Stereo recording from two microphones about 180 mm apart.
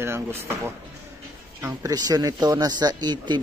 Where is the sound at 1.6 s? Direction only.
20° right (ahead or behind).